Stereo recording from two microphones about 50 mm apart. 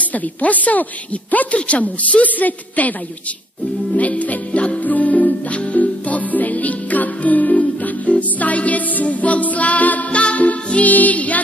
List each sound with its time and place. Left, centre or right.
0.0 s a woman's voice: left
3.9 s music: left